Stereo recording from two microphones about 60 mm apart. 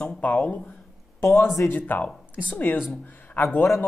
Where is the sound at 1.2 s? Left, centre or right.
Left.